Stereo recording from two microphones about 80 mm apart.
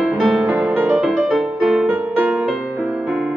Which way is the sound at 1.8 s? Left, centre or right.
Right.